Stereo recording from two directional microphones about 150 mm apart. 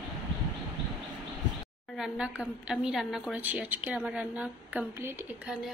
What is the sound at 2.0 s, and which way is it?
A woman's voice, 5° right (ahead or behind).